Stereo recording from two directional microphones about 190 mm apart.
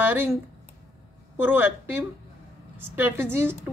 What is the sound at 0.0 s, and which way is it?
Speech, 10° right (ahead or behind).